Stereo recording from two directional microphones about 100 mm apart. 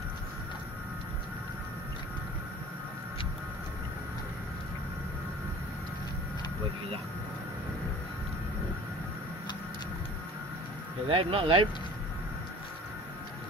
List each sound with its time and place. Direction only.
11.1 s speech: 65° right (ahead or behind)